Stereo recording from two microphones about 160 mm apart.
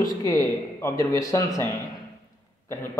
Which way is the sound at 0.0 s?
20° left (ahead or behind).